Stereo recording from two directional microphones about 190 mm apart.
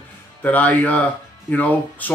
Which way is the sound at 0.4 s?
10° left (ahead or behind).